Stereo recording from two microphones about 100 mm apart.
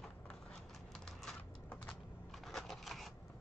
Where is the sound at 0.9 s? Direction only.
5° left (ahead or behind).